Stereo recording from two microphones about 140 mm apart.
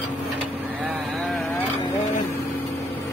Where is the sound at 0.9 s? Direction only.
Centre (ahead or behind).